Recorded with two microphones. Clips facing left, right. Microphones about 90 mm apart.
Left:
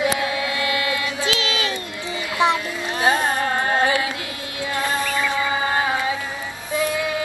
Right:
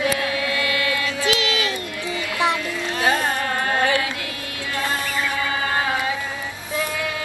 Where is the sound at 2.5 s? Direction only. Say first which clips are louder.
Left 1 dB; 25° left (ahead or behind).